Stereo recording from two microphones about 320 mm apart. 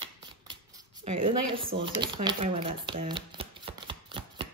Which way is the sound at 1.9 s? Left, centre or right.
Centre.